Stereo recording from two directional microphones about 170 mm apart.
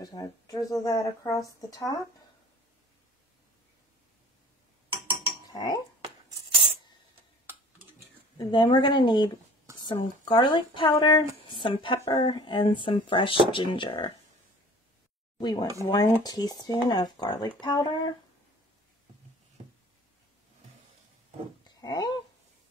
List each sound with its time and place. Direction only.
0.0 s speech: 20° left (ahead or behind)
5.5 s dishes: 25° left (ahead or behind)
8.4 s speech: 25° left (ahead or behind)
15.3 s speech: 25° left (ahead or behind)
21.6 s a sound: 25° left (ahead or behind)